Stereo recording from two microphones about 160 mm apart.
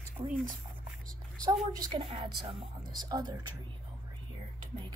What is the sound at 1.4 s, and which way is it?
A woman's voice, 25° right (ahead or behind).